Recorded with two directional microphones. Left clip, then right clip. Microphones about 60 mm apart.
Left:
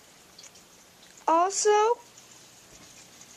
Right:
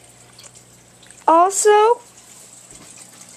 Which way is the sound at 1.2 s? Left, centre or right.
Centre.